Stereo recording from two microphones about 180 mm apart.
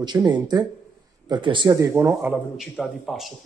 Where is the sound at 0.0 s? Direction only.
25° right (ahead or behind).